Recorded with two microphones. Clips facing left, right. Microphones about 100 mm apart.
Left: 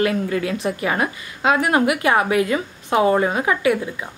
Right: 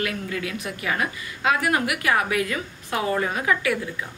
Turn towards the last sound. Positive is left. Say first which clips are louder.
# left 6 dB
turn(degrees=25)  # may be behind; listen again after turning